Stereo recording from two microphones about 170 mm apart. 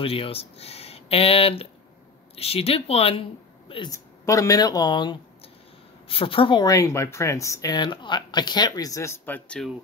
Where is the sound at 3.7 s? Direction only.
25° left (ahead or behind); by 9.7 s 5° left (ahead or behind).